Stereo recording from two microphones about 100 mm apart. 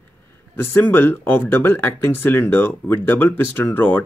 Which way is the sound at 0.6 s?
25° left (ahead or behind).